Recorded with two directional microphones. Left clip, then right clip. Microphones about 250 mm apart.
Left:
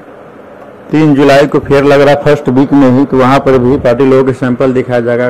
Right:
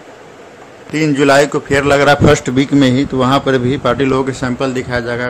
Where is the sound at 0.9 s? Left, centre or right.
Centre.